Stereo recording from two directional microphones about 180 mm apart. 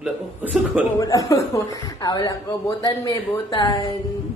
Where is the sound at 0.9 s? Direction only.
20° left (ahead or behind).